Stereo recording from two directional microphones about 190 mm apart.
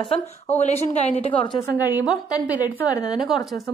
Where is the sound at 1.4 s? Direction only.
25° left (ahead or behind).